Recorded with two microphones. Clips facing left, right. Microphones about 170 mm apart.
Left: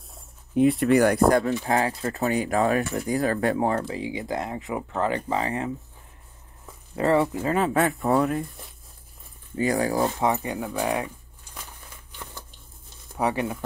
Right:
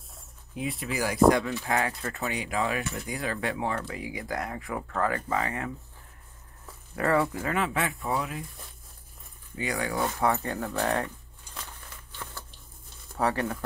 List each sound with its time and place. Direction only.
0.1 s a sound: centre (ahead or behind)
0.9 s speech: 60° left (ahead or behind)
1.6 s speech: 35° left (ahead or behind)
1.9 s speech: 25° left (ahead or behind)
2.2 s speech: 45° left (ahead or behind)
3.8 s speech: 25° left (ahead or behind)
7.0 s speech: 25° left (ahead or behind)
7.5 s speech: 40° left (ahead or behind)
9.6 s speech: 40° left (ahead or behind); by 11.1 s 10° left (ahead or behind)
13.1 s speech: 15° left (ahead or behind)